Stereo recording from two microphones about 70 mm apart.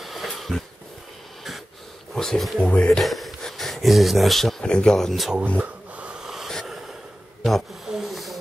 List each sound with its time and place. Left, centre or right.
0.0 s a sound: centre
2.1 s speech: centre
2.6 s speech: centre
3.0 s speech: centre
5.6 s rub: centre
6.1 s wheeze: centre
7.4 s a sound: centre